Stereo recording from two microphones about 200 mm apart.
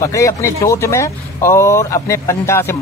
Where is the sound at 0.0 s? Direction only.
15° left (ahead or behind).